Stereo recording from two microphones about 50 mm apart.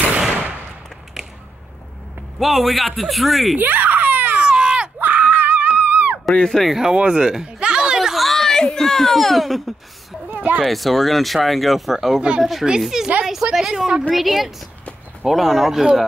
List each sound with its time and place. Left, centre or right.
2.3 s speech: centre
3.5 s baby cry: right
4.4 s a sound: right
5.0 s screaming: right
6.3 s speech: centre
6.8 s a sound: centre
10.3 s a sound: right
10.6 s speech: centre
12.2 s speech: right
12.8 s a woman's voice: centre
14.1 s speech: centre